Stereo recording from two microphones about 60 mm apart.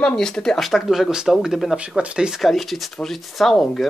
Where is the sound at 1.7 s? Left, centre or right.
Centre.